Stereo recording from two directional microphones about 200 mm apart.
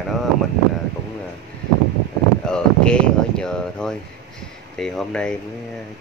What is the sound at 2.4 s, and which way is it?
Speech, 5° left (ahead or behind).